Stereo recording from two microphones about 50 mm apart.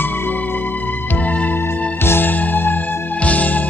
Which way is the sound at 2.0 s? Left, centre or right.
Left.